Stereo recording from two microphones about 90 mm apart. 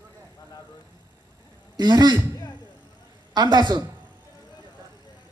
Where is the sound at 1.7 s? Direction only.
50° right (ahead or behind).